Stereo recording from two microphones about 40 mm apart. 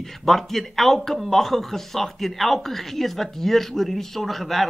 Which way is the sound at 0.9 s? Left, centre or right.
Centre.